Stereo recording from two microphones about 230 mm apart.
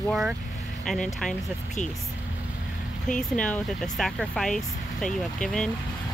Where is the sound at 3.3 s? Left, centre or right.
Centre.